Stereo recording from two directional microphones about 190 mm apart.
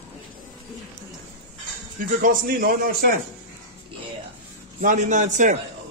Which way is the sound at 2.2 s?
45° right (ahead or behind).